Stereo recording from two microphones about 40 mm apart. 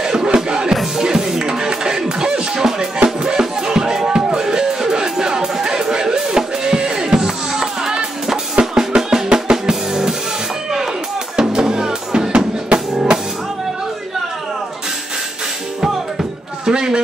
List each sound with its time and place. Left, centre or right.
0.0 s music: centre
11.3 s music: centre
12.7 s drum: centre
15.8 s music: centre